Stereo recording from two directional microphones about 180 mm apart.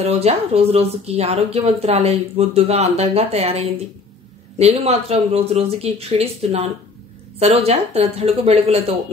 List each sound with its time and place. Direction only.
0.0 s a woman's voice: 35° right (ahead or behind)